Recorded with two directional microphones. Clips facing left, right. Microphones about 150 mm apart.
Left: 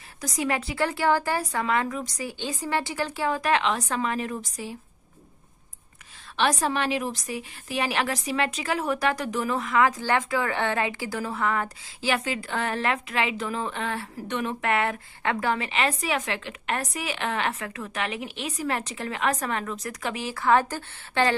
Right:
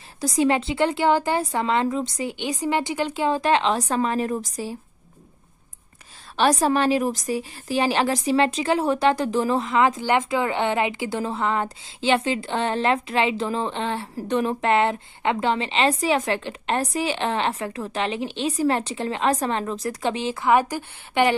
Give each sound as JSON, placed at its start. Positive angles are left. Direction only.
{"t": 0.2, "sound": "a woman's voice", "side_deg": -30}
{"t": 6.3, "sound": "a woman's voice", "side_deg": -40}